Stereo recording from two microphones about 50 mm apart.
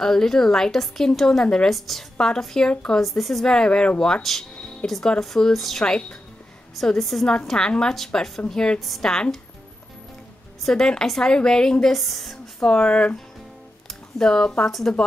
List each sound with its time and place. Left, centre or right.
0.0 s a woman's voice: centre
2.1 s a woman's voice: centre
2.7 s speech: left
3.0 s speech: centre
3.4 s a woman's voice: centre
4.2 s speech: centre
5.9 s speech: left
6.8 s a woman's voice: centre
8.7 s speech: centre
9.0 s a woman's voice: centre
10.6 s a woman's voice: centre
12.6 s a woman's voice: left